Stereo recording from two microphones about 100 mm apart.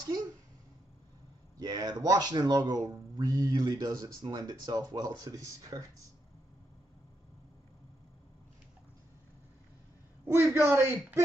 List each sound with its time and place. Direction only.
1.6 s speech: 40° right (ahead or behind)
10.2 s a man's voice: 25° right (ahead or behind)